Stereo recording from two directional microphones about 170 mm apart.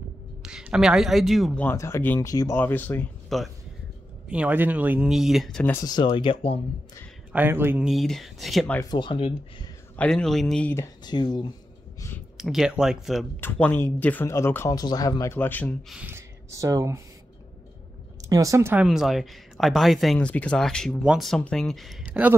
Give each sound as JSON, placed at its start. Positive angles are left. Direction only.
{"t": 0.4, "sound": "speech", "side_deg": -5}
{"t": 3.3, "sound": "speech", "side_deg": 0}
{"t": 5.9, "sound": "speech", "side_deg": 30}
{"t": 7.3, "sound": "speech", "side_deg": -15}
{"t": 7.9, "sound": "speech", "side_deg": 0}
{"t": 8.9, "sound": "speech", "side_deg": 30}
{"t": 9.9, "sound": "speech", "side_deg": 5}
{"t": 11.1, "sound": "speech", "side_deg": 25}
{"t": 12.4, "sound": "speech", "side_deg": 0}
{"t": 13.4, "sound": "speech", "side_deg": 10}
{"t": 15.3, "sound": "speech", "side_deg": 10}
{"t": 15.9, "sound": "speech", "side_deg": -10}
{"t": 18.3, "sound": "speech", "side_deg": -20}